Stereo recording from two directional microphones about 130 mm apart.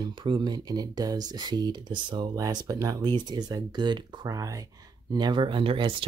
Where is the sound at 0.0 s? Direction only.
35° right (ahead or behind).